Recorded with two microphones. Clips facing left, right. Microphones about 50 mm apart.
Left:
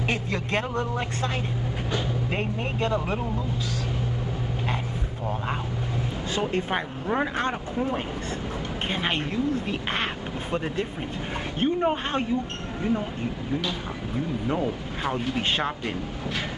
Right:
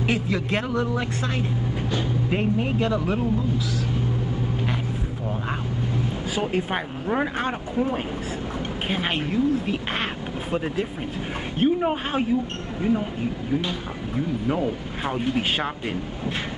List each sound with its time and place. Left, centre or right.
0.1 s speech: centre
2.3 s speech: centre
6.3 s speech: centre
8.8 s speech: centre
14.5 s speech: centre